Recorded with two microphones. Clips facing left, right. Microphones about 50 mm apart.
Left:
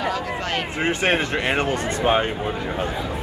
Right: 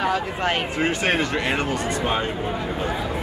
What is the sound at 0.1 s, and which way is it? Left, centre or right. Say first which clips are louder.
Speech: right 2 dB; right.